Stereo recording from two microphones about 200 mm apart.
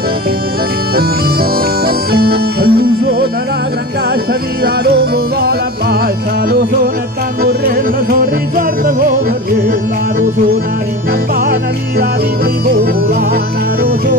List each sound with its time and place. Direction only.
0.9 s bagpipes: 50° right (ahead or behind)
4.8 s music: 50° right (ahead or behind)
7.4 s music: 45° right (ahead or behind)